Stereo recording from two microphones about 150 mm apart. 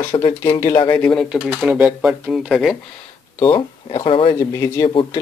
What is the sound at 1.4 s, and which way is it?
Speech, 10° right (ahead or behind).